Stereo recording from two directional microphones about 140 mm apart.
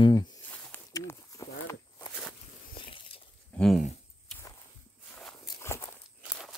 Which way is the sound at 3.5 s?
5° left (ahead or behind).